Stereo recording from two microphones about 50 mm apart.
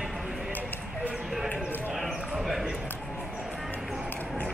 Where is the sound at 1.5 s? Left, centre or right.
Centre.